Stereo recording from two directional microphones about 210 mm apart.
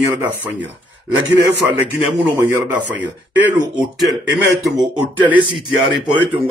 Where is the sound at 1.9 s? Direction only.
10° right (ahead or behind).